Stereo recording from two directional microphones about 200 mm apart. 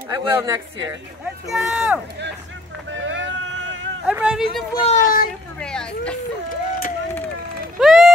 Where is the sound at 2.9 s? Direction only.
70° right (ahead or behind).